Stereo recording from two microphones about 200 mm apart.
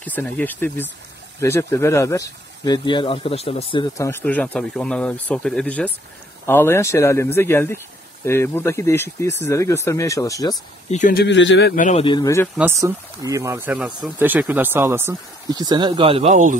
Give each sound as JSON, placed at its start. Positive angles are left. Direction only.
{"t": 0.0, "sound": "speech", "side_deg": 10}
{"t": 3.9, "sound": "speech", "side_deg": 15}
{"t": 10.9, "sound": "speech", "side_deg": 35}
{"t": 11.1, "sound": "speech", "side_deg": 65}
{"t": 11.7, "sound": "speech", "side_deg": 40}
{"t": 12.0, "sound": "speech", "side_deg": 20}
{"t": 12.5, "sound": "speech", "side_deg": -10}